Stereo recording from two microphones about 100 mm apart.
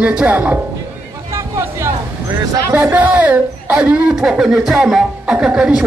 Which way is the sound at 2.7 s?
25° right (ahead or behind).